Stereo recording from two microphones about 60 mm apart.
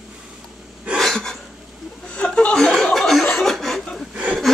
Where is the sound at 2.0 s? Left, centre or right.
Centre.